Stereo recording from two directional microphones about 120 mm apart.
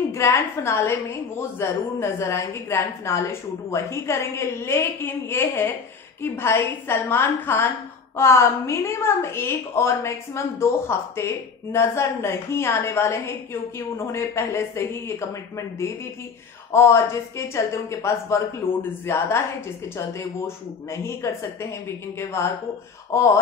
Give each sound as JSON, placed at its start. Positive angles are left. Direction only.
{"t": 0.1, "sound": "a woman's voice", "side_deg": 20}